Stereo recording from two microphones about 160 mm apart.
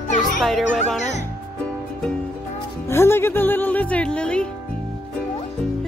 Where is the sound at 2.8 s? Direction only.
15° left (ahead or behind).